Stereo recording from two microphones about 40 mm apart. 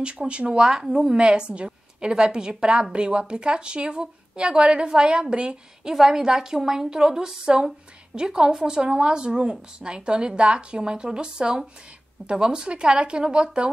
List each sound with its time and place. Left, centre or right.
0.3 s a woman's voice: right
5.9 s a woman's voice: centre